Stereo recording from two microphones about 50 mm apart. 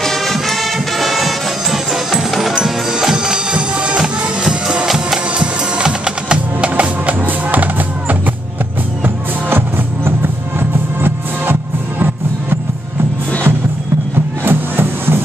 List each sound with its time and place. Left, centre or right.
0.0 s music: centre
5.8 s music: centre
11.0 s music: right
14.4 s music: right